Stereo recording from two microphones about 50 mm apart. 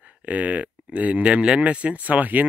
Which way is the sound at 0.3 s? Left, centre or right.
Right.